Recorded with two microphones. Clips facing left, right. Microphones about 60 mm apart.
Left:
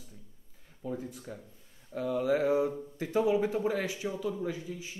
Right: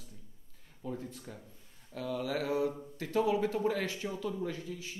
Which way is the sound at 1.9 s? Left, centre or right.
Centre.